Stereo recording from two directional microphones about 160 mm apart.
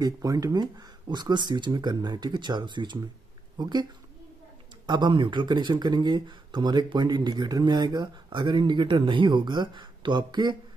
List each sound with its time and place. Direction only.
0.0 s speech: 25° right (ahead or behind)
4.8 s speech: 30° right (ahead or behind)